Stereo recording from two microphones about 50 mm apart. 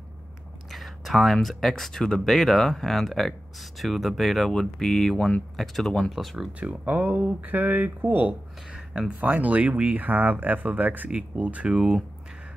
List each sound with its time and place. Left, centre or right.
0.7 s speech: centre
6.6 s speech: right
8.6 s speech: centre
9.2 s speech: right
11.7 s speech: centre